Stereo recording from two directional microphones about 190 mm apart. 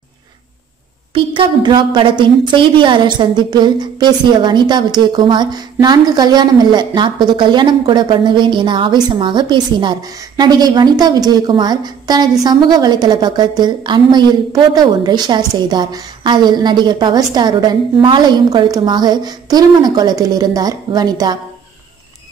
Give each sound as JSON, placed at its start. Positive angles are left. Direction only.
{"t": 1.1, "sound": "a woman's voice", "side_deg": -25}